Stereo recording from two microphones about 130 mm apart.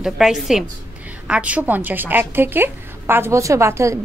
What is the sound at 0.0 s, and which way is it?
A woman's voice, centre (ahead or behind).